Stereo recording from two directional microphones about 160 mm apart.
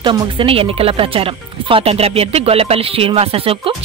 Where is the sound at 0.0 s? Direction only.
30° right (ahead or behind).